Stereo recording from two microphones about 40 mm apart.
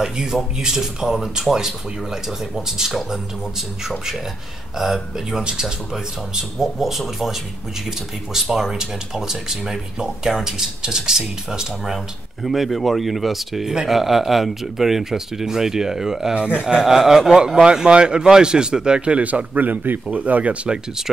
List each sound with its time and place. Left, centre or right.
0.0 s speech: centre
4.7 s speech: centre
5.4 s speech: right
6.3 s speech: centre
12.4 s speech: centre
16.3 s speech: right
16.6 s speech: centre
17.8 s speech: right